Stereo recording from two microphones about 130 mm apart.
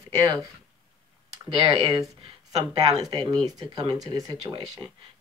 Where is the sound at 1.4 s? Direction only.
40° right (ahead or behind).